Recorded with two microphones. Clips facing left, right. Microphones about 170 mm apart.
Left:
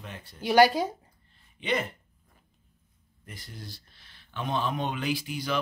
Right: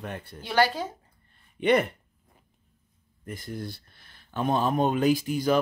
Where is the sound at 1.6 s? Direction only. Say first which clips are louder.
Right 8 dB; 60° right (ahead or behind).